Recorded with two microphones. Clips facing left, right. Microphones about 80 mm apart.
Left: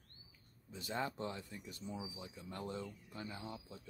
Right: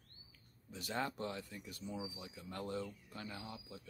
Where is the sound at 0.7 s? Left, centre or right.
Centre.